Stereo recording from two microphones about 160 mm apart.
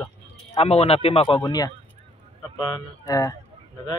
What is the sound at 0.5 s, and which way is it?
Speech, 40° left (ahead or behind).